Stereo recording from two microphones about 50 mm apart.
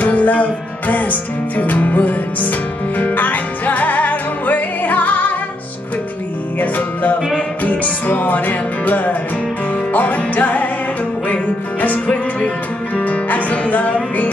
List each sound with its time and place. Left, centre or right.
0.0 s music: left
6.6 s music: left